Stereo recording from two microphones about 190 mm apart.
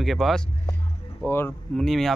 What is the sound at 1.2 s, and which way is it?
Speech, 10° left (ahead or behind).